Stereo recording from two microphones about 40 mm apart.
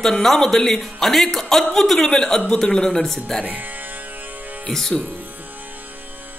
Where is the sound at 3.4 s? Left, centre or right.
Right.